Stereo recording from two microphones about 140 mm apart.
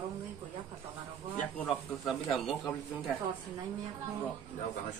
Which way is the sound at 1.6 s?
Centre (ahead or behind).